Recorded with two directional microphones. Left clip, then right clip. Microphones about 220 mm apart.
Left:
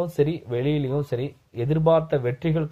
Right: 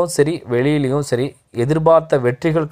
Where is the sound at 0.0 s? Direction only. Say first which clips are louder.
Right 7 dB; 30° right (ahead or behind).